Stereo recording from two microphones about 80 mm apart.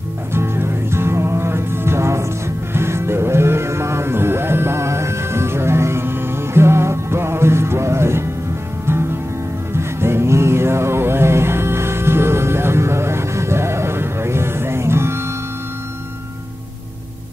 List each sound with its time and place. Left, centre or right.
0.3 s music: right
9.8 s music: right